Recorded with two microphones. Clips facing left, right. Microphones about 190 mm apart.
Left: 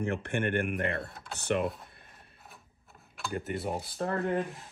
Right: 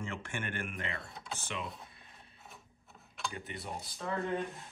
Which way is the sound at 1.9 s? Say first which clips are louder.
Left 2 dB; 55° left (ahead or behind).